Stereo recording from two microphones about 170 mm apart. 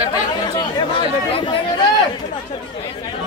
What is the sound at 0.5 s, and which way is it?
Speech, 25° left (ahead or behind).